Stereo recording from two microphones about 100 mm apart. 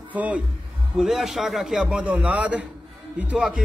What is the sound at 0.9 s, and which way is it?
A man's voice, 5° right (ahead or behind).